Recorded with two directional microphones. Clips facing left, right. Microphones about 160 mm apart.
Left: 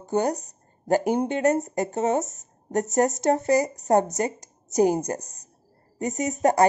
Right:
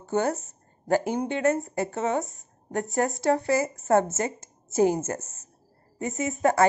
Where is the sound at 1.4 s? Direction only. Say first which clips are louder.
Left 2 dB; 40° left (ahead or behind).